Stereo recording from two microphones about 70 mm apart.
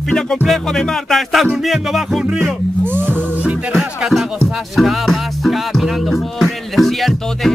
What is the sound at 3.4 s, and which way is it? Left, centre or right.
Music, centre.